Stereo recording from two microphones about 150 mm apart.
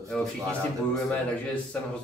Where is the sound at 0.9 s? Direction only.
5° left (ahead or behind).